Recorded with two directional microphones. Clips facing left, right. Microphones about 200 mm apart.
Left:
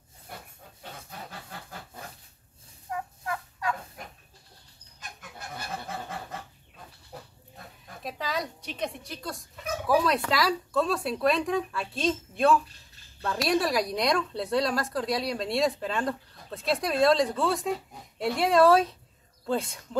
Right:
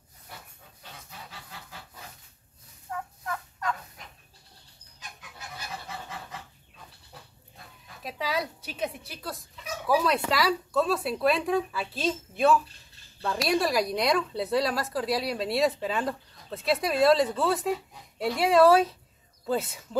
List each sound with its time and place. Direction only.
1.1 s a sound: 50° left (ahead or behind)
2.9 s turkey: 10° left (ahead or behind)
5.5 s goose: 50° left (ahead or behind)
8.0 s a woman's voice: 5° right (ahead or behind)